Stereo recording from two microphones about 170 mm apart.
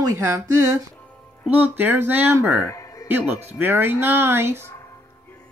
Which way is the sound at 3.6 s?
10° right (ahead or behind).